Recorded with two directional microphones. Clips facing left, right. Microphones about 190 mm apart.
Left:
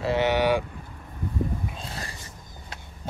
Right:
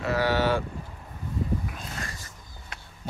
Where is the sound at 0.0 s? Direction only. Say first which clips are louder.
Left 2 dB; 25° left (ahead or behind).